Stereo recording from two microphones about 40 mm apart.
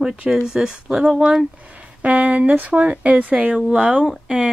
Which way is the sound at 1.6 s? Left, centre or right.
Right.